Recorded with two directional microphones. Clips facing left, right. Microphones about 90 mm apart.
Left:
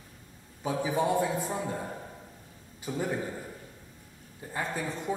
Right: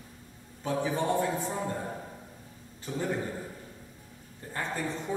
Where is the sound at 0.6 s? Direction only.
10° left (ahead or behind).